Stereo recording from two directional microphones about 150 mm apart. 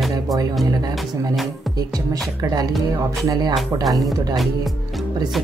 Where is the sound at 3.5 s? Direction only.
Centre (ahead or behind).